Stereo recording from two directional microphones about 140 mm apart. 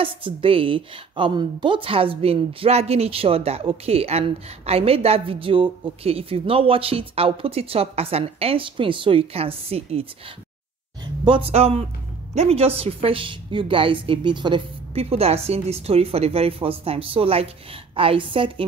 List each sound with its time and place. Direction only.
0.0 s a woman's voice: 40° right (ahead or behind)
11.2 s a woman's voice: 40° right (ahead or behind)
15.0 s a woman's voice: 45° right (ahead or behind)